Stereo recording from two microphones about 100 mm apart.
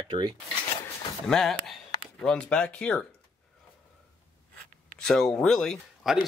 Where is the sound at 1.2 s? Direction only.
5° left (ahead or behind).